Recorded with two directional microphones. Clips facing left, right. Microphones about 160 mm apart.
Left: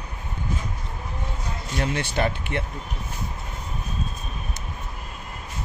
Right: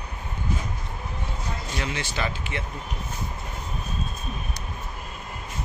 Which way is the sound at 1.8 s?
50° left (ahead or behind).